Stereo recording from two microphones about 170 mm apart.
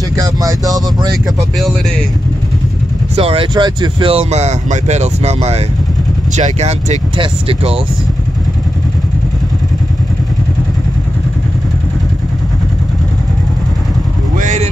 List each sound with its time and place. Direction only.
0.1 s speech: 20° right (ahead or behind)
3.2 s speech: 35° right (ahead or behind)
14.4 s vehicle: 45° right (ahead or behind)